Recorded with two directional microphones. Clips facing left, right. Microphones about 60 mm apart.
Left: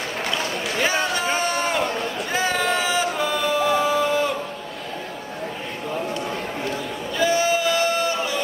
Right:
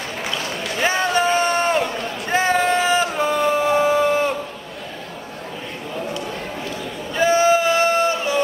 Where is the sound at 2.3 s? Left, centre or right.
Right.